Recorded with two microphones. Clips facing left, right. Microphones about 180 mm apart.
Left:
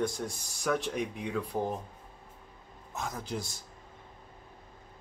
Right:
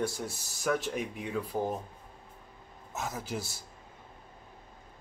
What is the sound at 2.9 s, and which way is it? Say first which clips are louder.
Speech: even; 5° right (ahead or behind).